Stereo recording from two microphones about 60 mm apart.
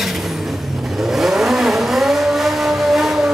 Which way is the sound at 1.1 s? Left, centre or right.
Centre.